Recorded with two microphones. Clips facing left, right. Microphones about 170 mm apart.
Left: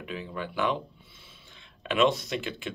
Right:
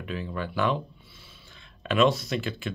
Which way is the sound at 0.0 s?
15° left (ahead or behind).